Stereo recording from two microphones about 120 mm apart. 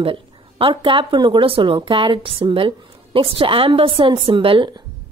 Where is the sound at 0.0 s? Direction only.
45° right (ahead or behind).